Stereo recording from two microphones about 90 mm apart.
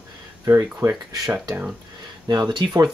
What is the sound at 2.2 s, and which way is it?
Speech, 55° right (ahead or behind).